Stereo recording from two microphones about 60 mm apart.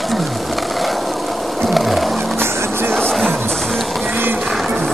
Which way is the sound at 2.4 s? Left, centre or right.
Right.